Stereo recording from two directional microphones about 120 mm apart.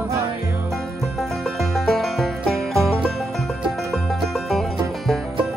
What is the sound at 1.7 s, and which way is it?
Music, centre (ahead or behind).